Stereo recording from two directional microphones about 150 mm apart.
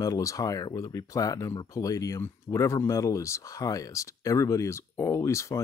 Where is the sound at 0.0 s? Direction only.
25° left (ahead or behind).